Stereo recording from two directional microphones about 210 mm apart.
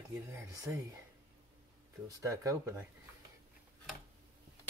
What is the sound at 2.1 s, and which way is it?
Speech, 15° right (ahead or behind).